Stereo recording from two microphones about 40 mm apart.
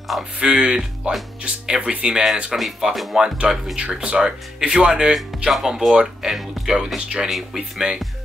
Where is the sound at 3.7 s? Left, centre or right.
Right.